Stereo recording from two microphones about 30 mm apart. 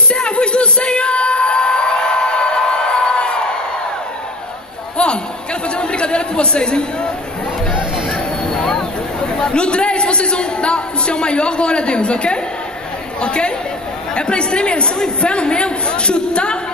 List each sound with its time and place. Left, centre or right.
0.1 s whoop: left
4.9 s chatter: left
8.5 s a sound: left
9.5 s a man's voice: left